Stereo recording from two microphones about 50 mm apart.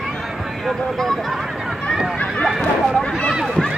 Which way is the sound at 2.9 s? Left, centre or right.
Centre.